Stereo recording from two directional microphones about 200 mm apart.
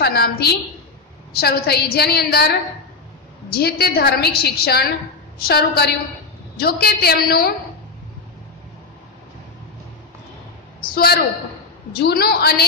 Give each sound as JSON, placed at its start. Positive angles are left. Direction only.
{"t": 0.0, "sound": "a woman's voice", "side_deg": 50}
{"t": 10.8, "sound": "a man's voice", "side_deg": 50}